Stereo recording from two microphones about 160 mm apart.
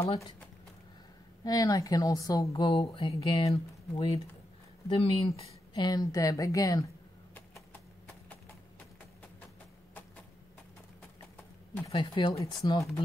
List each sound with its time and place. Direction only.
1.4 s speech: 20° left (ahead or behind)
2.7 s a sound: 35° left (ahead or behind)
3.5 s speech: 40° left (ahead or behind)
5.9 s speech: 20° left (ahead or behind)
11.9 s a sound: 30° left (ahead or behind)
12.6 s speech: 25° left (ahead or behind)